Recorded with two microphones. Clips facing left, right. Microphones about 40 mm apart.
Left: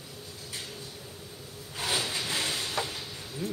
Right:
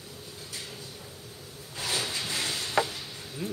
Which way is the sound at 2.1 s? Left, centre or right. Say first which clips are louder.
Left 1 dB; left.